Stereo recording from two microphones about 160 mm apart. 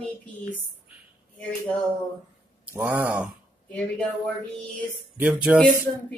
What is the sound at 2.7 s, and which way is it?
Speech, 10° right (ahead or behind).